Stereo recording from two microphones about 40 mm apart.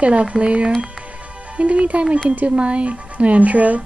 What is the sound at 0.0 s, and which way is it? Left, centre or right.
Speech, right.